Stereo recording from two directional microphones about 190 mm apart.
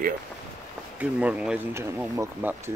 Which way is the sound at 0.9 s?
5° right (ahead or behind).